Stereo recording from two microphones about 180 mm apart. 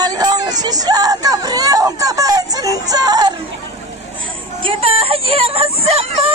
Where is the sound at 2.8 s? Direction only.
20° right (ahead or behind).